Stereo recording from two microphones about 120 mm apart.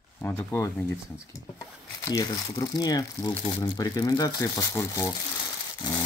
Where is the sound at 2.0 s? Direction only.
30° left (ahead or behind).